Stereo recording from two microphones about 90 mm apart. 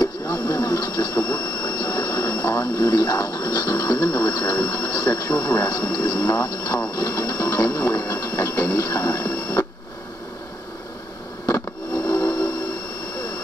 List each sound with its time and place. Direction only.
0.0 s printer: 40° left (ahead or behind)
4.7 s speech: 40° left (ahead or behind)
7.0 s sewing machine: 40° left (ahead or behind)
8.1 s printer: 35° left (ahead or behind)
8.4 s a sound: 35° left (ahead or behind)
9.2 s printer: 20° left (ahead or behind)
11.4 s a sound: 35° left (ahead or behind)
12.1 s steam whistle: 40° left (ahead or behind)